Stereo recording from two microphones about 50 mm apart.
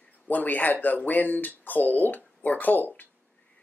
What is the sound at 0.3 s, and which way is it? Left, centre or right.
Speech, left.